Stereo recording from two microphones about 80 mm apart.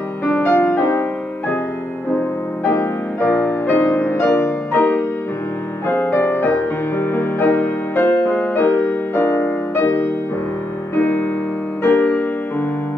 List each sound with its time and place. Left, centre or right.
0.3 s music: left
2.7 s music: left
4.7 s music: left
11.0 s music: left